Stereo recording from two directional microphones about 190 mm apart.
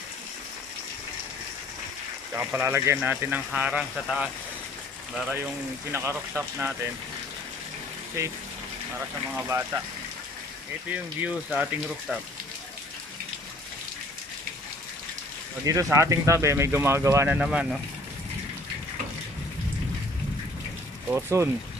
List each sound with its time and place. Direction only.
2.3 s speech: 10° right (ahead or behind)
8.2 s speech: 15° right (ahead or behind)
9.5 s speech: 15° right (ahead or behind)
10.9 s speech: 10° right (ahead or behind)
15.6 s speech: 15° right (ahead or behind)
21.1 s speech: 15° right (ahead or behind)